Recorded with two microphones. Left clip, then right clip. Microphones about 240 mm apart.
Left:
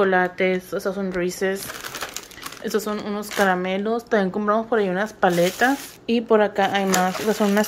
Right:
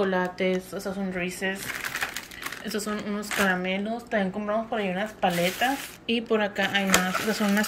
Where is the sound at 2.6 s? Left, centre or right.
Centre.